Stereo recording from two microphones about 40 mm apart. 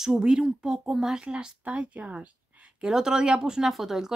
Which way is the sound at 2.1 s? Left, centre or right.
Right.